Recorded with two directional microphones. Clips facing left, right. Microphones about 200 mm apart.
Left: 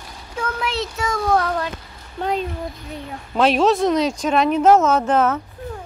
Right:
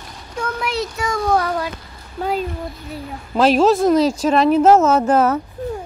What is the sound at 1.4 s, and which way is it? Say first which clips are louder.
Speech: right 1 dB; 10° right (ahead or behind).